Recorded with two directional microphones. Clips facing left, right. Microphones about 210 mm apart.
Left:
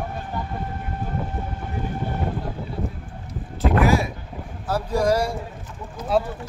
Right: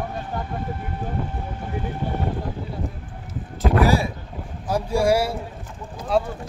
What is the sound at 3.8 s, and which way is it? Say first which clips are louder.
Speech: even; 30° right (ahead or behind).